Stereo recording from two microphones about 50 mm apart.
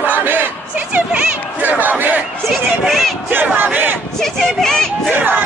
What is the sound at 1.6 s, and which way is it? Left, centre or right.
Crowd, right.